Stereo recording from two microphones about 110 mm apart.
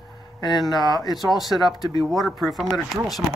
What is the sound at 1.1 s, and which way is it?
Speech, centre (ahead or behind).